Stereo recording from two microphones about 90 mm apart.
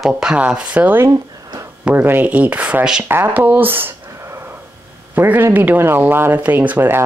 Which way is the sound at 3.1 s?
25° right (ahead or behind).